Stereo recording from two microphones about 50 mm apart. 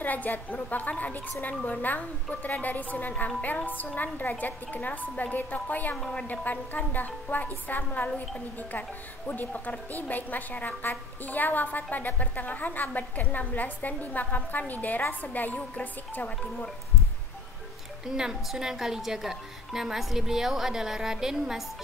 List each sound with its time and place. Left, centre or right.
0.0 s a woman's voice: left
9.3 s a woman's voice: left
18.0 s speech: centre